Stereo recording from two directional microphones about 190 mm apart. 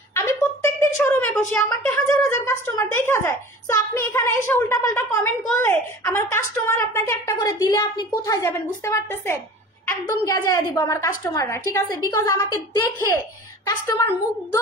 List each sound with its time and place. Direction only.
0.1 s a woman's voice: 15° left (ahead or behind)